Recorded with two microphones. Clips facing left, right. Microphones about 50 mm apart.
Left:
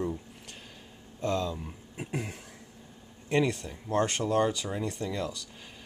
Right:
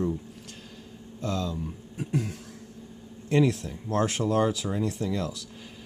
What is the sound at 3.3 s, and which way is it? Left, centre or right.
Speech, centre.